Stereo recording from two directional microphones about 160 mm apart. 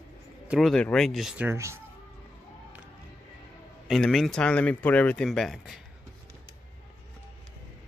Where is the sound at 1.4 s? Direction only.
15° right (ahead or behind).